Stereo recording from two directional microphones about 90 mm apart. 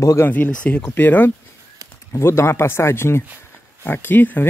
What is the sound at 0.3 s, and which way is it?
Speech, 15° left (ahead or behind).